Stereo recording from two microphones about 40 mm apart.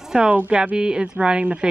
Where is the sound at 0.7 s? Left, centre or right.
Right.